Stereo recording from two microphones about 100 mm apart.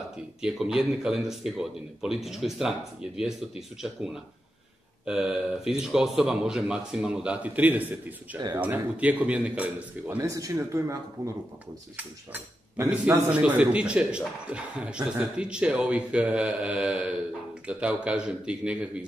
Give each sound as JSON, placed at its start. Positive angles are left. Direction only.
{"t": 0.4, "sound": "speech", "side_deg": -5}
{"t": 7.4, "sound": "a man's voice", "side_deg": -15}
{"t": 10.0, "sound": "speech", "side_deg": -30}
{"t": 12.0, "sound": "a man's voice", "side_deg": -15}